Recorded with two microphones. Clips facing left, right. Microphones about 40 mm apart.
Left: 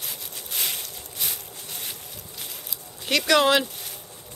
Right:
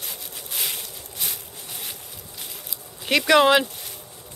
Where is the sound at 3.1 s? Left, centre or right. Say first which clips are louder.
Right 3 dB; centre.